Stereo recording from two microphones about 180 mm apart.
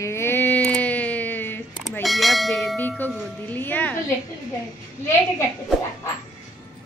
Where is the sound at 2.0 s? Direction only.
Centre (ahead or behind).